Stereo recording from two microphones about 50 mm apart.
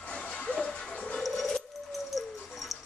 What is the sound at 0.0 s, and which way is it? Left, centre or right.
Music, left.